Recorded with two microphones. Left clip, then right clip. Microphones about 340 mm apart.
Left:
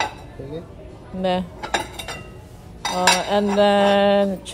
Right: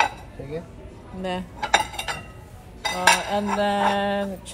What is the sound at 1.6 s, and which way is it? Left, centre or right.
Cutlery, right.